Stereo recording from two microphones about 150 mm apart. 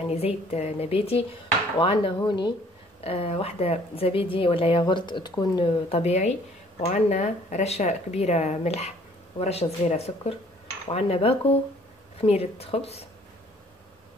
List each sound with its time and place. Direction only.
0.1 s a woman's voice: 45° left (ahead or behind); by 5.7 s 30° left (ahead or behind)
5.7 s a woman's voice: 40° left (ahead or behind)